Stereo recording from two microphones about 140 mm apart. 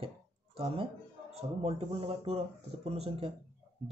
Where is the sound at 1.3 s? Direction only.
45° right (ahead or behind).